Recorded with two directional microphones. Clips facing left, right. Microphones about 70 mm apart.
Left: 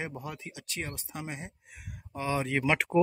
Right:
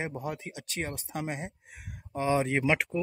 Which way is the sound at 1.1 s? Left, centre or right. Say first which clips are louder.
Right 6 dB; right.